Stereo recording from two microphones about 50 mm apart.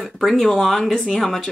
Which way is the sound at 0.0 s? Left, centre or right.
Centre.